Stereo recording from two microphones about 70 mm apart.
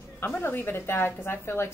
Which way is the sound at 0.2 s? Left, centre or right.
Left.